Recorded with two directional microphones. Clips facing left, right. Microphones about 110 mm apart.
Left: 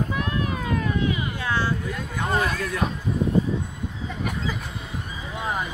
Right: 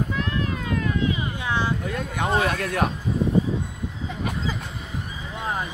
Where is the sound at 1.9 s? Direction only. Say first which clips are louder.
Right 2 dB; 65° right (ahead or behind).